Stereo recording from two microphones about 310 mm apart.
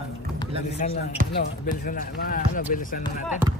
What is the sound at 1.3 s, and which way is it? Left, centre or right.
Speech, left.